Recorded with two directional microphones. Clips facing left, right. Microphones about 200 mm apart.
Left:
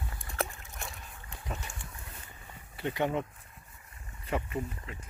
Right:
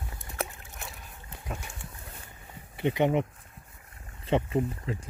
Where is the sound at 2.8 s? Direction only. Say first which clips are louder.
Right 6 dB; 20° right (ahead or behind).